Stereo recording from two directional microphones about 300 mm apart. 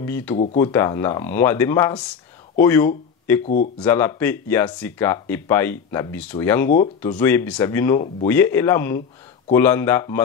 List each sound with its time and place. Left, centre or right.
0.0 s speech: centre
3.4 s speech: left
3.8 s speech: centre